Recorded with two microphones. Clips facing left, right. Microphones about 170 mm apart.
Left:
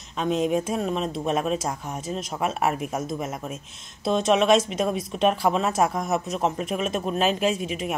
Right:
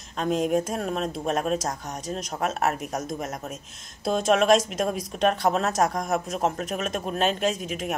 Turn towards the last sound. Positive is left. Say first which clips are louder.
# left 2 dB
turn(degrees=0)  # may be behind; listen again after turning